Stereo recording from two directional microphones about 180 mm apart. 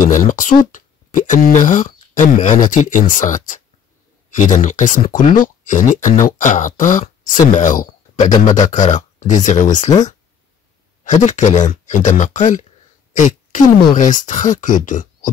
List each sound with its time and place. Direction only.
0.0 s speech: 45° left (ahead or behind)
4.6 s speech: 45° left (ahead or behind)
11.2 s speech: 40° left (ahead or behind)
13.1 s a sound: 45° left (ahead or behind)
13.9 s speech: 45° left (ahead or behind)